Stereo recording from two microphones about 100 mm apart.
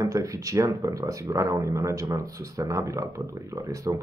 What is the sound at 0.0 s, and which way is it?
Speech, 35° right (ahead or behind).